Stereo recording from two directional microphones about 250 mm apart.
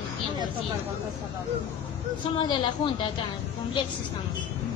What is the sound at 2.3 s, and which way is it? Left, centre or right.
Speech, centre.